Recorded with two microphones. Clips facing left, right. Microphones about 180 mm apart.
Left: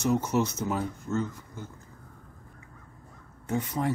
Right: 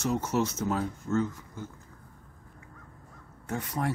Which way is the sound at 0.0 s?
5° right (ahead or behind).